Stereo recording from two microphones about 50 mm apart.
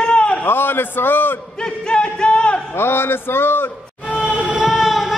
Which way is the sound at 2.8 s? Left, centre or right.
Left.